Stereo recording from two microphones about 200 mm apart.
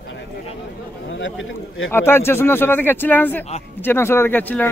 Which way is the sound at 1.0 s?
70° left (ahead or behind).